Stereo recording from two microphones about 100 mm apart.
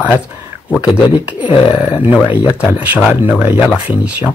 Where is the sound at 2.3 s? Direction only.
15° right (ahead or behind).